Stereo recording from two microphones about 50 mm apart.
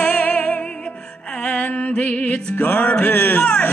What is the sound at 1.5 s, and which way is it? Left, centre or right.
Music, left.